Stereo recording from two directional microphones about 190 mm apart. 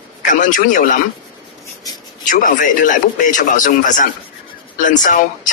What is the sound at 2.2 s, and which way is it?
Speech, 45° left (ahead or behind).